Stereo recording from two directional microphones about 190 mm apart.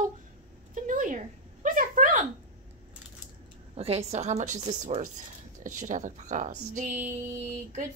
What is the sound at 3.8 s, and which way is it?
Speech, 35° right (ahead or behind).